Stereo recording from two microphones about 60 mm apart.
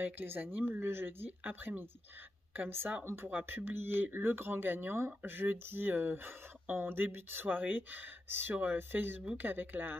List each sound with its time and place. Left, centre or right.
0.0 s speech: right